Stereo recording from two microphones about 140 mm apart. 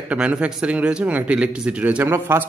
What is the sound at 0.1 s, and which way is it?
A man's voice, 10° right (ahead or behind).